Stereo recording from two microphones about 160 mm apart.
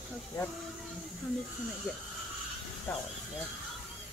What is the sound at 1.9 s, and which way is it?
Speech, 5° right (ahead or behind).